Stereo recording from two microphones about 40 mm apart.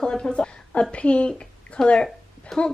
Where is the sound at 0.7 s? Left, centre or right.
Left.